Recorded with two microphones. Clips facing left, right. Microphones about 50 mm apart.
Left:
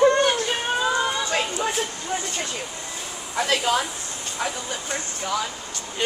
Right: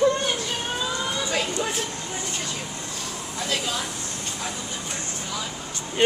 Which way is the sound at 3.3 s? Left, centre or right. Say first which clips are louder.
Left 7 dB; left.